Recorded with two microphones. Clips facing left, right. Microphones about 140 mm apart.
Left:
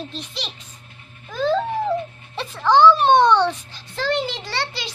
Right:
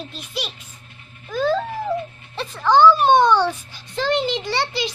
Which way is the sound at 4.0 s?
20° right (ahead or behind).